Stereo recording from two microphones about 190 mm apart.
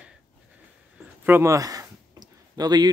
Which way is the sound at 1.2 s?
15° right (ahead or behind).